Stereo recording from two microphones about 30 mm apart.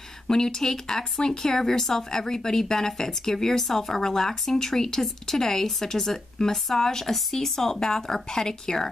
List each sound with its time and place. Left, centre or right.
0.3 s speech: centre